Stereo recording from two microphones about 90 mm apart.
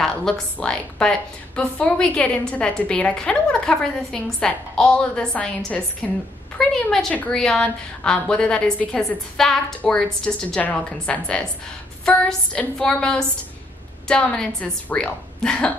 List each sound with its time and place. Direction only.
0.0 s a woman's voice: 5° left (ahead or behind)